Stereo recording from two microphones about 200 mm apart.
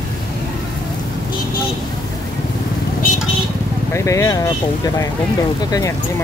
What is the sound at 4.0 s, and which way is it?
Speech, 15° left (ahead or behind).